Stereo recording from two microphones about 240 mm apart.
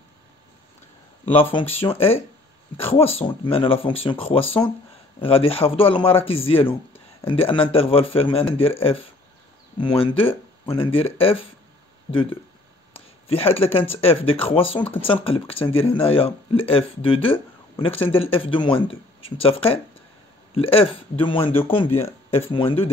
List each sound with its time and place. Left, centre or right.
1.5 s speech: left
12.9 s a sound: left
13.7 s speech: left